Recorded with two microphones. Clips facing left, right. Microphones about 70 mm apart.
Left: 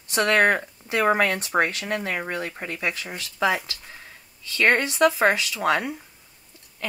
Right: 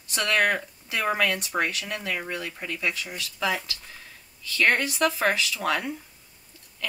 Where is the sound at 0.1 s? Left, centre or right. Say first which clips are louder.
Left 4 dB; left.